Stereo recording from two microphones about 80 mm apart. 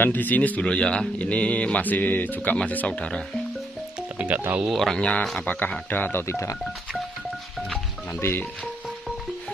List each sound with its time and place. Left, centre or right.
0.0 s speech: left
4.2 s speech: centre
4.6 s speech: centre
5.4 s speech: left
8.2 s speech: left